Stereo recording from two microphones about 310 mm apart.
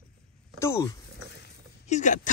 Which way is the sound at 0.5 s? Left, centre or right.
Centre.